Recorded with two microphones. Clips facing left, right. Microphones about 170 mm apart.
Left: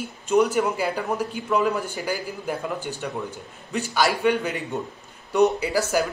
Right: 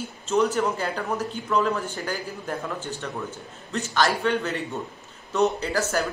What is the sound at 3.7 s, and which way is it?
Speech, 10° left (ahead or behind).